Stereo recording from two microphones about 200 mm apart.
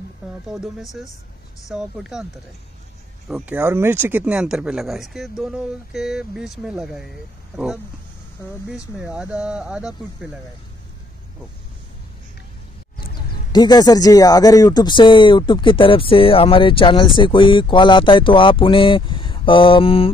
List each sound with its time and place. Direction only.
0.2 s speech: 5° right (ahead or behind)
1.7 s speech: 5° right (ahead or behind)
3.3 s speech: 5° right (ahead or behind)
13.5 s speech: 20° left (ahead or behind)